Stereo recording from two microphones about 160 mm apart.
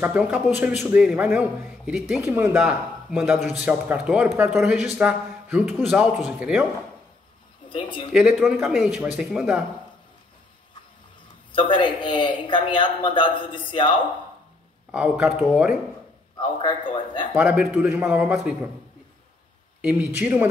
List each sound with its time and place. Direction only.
0.0 s a man's voice: 5° right (ahead or behind)
2.2 s speech: 15° right (ahead or behind)
7.7 s a man's voice: 35° left (ahead or behind)
8.1 s speech: 5° right (ahead or behind)
11.5 s a man's voice: 30° left (ahead or behind)
14.9 s speech: 5° right (ahead or behind)
16.3 s a man's voice: 30° left (ahead or behind)
17.3 s a man's voice: 5° right (ahead or behind)
19.8 s a man's voice: 10° right (ahead or behind)